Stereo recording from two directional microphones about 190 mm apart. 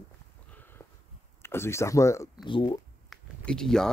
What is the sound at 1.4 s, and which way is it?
Speech, 15° left (ahead or behind).